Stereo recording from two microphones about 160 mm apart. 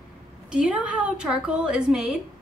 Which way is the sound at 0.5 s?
5° right (ahead or behind).